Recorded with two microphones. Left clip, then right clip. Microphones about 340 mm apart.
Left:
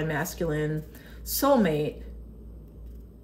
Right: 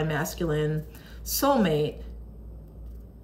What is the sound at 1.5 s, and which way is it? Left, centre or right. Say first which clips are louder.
Speech: left 1 dB; centre.